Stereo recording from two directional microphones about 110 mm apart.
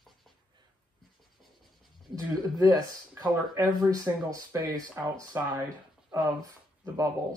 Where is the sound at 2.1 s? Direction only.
35° right (ahead or behind).